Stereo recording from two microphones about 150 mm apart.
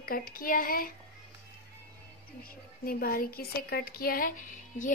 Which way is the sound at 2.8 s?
80° left.